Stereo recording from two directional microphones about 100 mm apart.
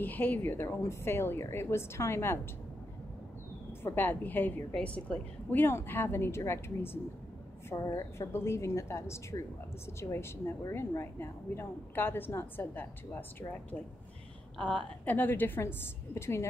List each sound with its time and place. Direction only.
0.0 s a woman's voice: 20° left (ahead or behind)
3.8 s a woman's voice: 20° left (ahead or behind)